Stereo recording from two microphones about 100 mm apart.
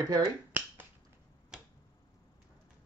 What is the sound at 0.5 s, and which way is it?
Finger snapping, 15° right (ahead or behind).